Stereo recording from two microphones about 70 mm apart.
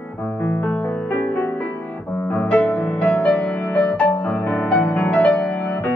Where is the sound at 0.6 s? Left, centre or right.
Left.